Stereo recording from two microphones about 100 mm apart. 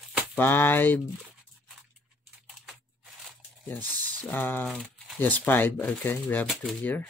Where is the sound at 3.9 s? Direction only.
15° left (ahead or behind).